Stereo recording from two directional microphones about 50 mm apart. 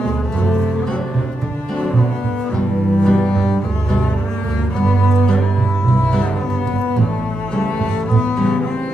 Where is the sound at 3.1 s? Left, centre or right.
Centre.